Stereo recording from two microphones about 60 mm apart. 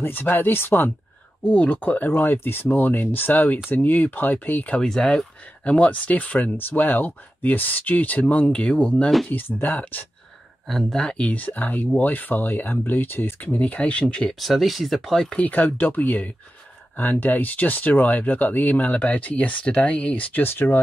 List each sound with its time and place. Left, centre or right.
0.0 s speech: left
4.7 s speech: centre
9.3 s speech: left
10.7 s speech: centre
11.2 s speech: left
13.6 s speech: left
14.4 s speech: centre
15.4 s speech: left